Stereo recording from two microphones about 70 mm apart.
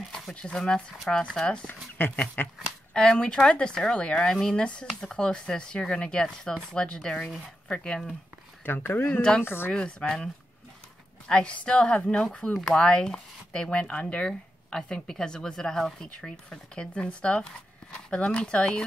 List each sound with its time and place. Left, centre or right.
0.3 s speech: centre
1.7 s speech: left
2.9 s speech: centre
8.6 s a woman's voice: left
9.7 s speech: centre